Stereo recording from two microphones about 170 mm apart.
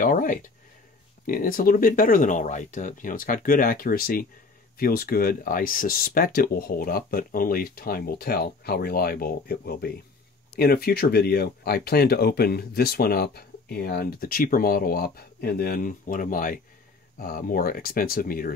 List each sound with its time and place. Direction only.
0.0 s speech: 50° left (ahead or behind)